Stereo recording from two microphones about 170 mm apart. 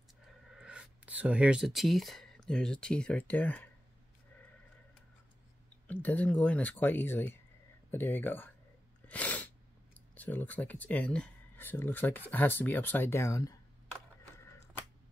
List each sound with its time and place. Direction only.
0.5 s speech: 5° right (ahead or behind); by 3.6 s 10° left (ahead or behind)
5.9 s speech: 10° left (ahead or behind)
9.0 s sneeze: 10° left (ahead or behind)
10.1 s speech: 10° left (ahead or behind)
14.4 s a sound: 15° left (ahead or behind)